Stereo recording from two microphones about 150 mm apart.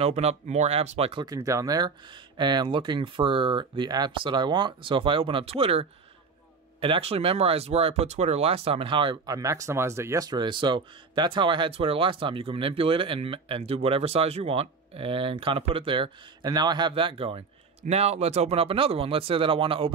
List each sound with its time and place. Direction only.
0.0 s speech: 45° right (ahead or behind)
1.2 s speech: 25° right (ahead or behind)